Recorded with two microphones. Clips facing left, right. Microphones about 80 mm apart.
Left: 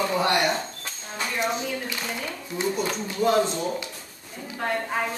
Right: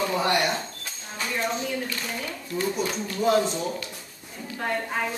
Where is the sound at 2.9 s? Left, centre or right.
Centre.